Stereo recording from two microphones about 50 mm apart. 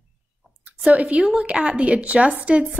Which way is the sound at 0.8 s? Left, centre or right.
Right.